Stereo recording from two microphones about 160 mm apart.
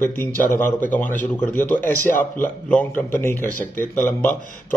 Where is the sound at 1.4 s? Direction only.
10° left (ahead or behind).